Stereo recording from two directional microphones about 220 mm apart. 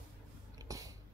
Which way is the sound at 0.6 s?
15° right (ahead or behind).